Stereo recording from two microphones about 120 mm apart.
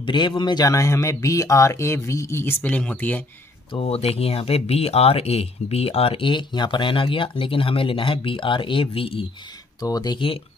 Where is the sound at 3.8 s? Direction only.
55° left (ahead or behind).